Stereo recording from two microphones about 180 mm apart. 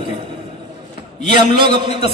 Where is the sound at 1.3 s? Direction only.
25° right (ahead or behind).